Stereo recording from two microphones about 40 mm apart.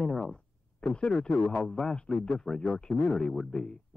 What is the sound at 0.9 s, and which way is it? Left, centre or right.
Speech, left.